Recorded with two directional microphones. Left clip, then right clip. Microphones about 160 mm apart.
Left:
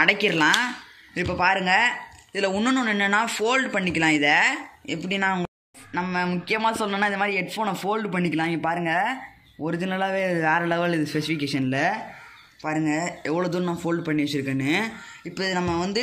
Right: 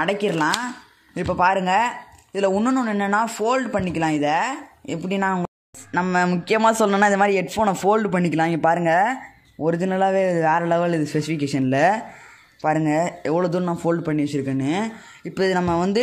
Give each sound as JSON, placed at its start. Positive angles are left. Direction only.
{"t": 0.0, "sound": "a man's voice", "side_deg": -40}
{"t": 1.1, "sound": "a man's voice", "side_deg": -55}
{"t": 12.6, "sound": "speech", "side_deg": -60}
{"t": 15.2, "sound": "speech", "side_deg": -60}